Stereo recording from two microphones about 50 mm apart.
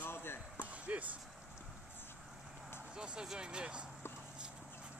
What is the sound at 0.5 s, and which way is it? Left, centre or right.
Basketball bounce, right.